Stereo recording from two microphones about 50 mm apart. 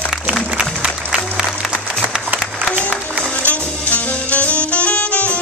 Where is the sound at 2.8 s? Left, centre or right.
Left.